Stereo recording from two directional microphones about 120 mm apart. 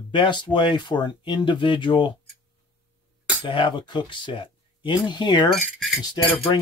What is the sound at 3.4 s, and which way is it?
Speech, 45° left (ahead or behind).